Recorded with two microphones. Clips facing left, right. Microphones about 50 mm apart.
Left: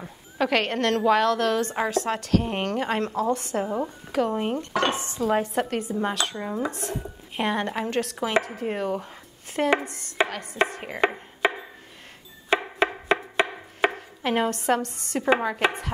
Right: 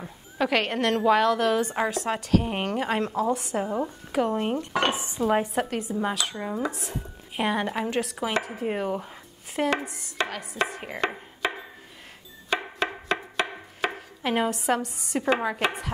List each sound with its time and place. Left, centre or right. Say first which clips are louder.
0.0 s a woman's voice: left 1 dB; centre
4.6 s dishes: left 1 dB; centre
5.5 s a woman's voice: left 1 dB; centre
10.2 s chopping: left 2 dB; centre
10.8 s a woman's voice: left 4 dB; centre
11.4 s a sound: left 5 dB; centre
12.7 s music: left 4 dB; centre
13.9 s speech: left 1 dB; centre